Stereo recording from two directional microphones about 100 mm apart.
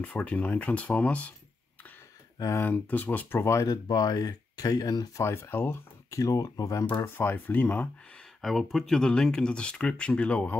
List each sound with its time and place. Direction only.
0.0 s speech: 15° left (ahead or behind)
2.5 s speech: 20° left (ahead or behind)
3.6 s speech: 40° left (ahead or behind)
5.2 s speech: 25° left (ahead or behind)
6.1 s speech: 35° left (ahead or behind)
7.2 s speech: 20° left (ahead or behind)
8.4 s speech: centre (ahead or behind)